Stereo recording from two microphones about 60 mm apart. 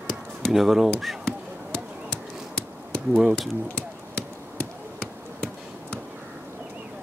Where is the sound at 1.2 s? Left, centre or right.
Centre.